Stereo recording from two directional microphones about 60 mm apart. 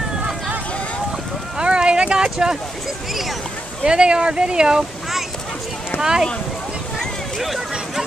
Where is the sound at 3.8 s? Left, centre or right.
Centre.